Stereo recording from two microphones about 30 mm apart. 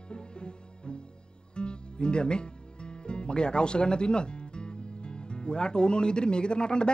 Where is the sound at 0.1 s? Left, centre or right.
Left.